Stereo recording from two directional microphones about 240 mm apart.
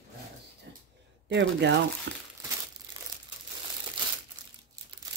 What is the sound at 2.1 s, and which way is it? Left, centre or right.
Crumpling, right.